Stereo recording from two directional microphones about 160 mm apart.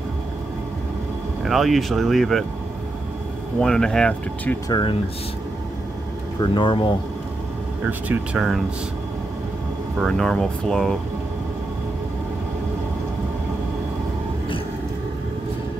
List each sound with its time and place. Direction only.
1.4 s speech: centre (ahead or behind)
3.6 s speech: 5° left (ahead or behind)
4.6 s speech: 25° left (ahead or behind)
6.4 s speech: 30° left (ahead or behind)
8.1 s speech: 5° right (ahead or behind)
10.0 s speech: 5° left (ahead or behind)